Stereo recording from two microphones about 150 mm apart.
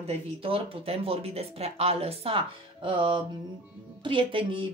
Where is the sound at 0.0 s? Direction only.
40° right (ahead or behind).